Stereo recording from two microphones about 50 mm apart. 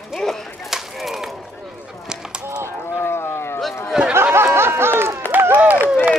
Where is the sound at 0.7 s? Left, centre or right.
Centre.